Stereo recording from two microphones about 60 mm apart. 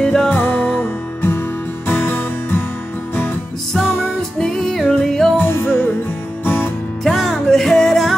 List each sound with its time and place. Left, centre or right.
0.0 s music: centre
0.4 s music: left
3.8 s music: left
4.4 s music: centre
5.4 s music: left
7.1 s music: centre